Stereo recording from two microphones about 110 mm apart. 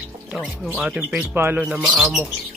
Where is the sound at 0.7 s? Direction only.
10° right (ahead or behind).